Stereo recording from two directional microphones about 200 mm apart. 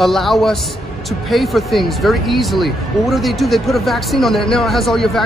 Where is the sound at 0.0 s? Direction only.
Centre (ahead or behind).